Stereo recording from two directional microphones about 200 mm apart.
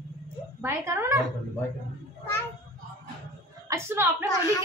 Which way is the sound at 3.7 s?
15° right (ahead or behind).